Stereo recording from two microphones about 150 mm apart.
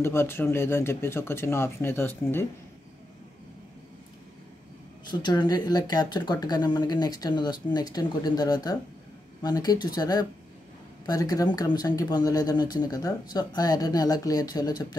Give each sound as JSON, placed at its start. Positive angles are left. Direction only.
{"t": 0.0, "sound": "speech", "side_deg": 15}
{"t": 5.2, "sound": "speech", "side_deg": 30}